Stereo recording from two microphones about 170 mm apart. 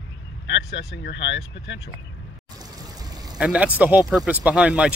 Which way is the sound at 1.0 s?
90° left.